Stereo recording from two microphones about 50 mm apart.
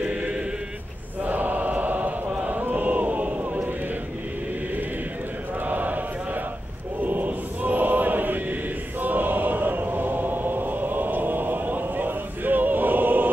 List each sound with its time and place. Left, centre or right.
0.0 s choir: right
1.2 s chant: right
2.6 s a sound: right
5.7 s a sound: right
7.0 s chant: right
9.0 s choir: right